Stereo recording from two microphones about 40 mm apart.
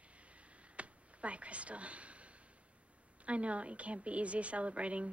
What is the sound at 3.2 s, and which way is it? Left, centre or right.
A woman's voice, right.